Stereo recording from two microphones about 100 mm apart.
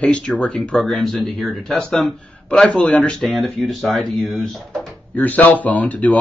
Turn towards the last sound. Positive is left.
turn(degrees=15)  # may be behind; listen again after turning